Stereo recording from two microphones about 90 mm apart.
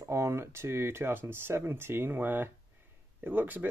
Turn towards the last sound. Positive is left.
turn(degrees=-20)  # may be behind; listen again after turning